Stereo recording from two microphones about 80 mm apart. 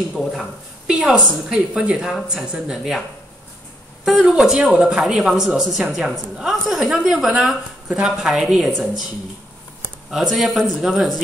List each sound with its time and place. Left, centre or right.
0.2 s speech: centre
0.8 s a woman's voice: centre
4.0 s speech: centre
10.1 s speech: centre